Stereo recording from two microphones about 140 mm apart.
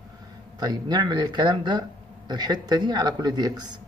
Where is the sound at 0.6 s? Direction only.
30° right (ahead or behind).